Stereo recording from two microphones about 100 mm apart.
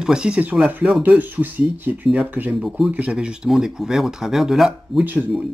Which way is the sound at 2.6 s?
Centre (ahead or behind).